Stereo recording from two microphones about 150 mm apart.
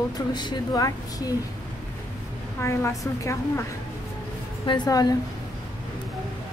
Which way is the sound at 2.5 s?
20° left (ahead or behind).